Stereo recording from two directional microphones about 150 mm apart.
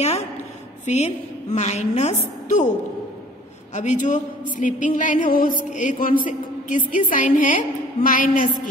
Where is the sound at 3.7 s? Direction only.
55° left (ahead or behind).